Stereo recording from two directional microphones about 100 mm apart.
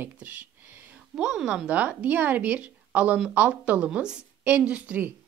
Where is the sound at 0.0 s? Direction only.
15° right (ahead or behind).